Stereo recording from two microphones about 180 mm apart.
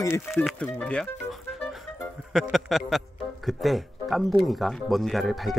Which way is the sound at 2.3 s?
Centre (ahead or behind).